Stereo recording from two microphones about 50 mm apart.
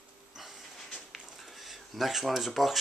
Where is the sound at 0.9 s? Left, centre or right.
Centre.